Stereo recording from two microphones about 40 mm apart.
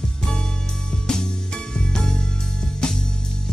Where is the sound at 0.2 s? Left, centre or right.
Centre.